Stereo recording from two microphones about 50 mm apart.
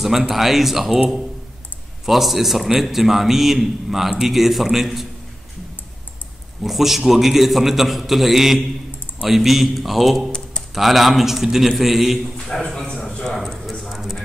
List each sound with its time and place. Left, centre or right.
0.0 s a man's voice: centre
2.0 s a man's voice: centre
6.6 s a man's voice: centre
12.4 s a man's voice: centre
12.7 s a sound: centre
13.8 s a sound: centre